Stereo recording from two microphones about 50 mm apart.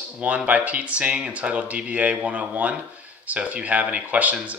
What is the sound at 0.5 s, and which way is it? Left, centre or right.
Speech, right.